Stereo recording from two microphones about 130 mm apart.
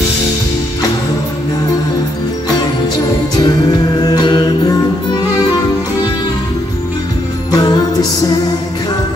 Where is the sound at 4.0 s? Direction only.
35° left (ahead or behind).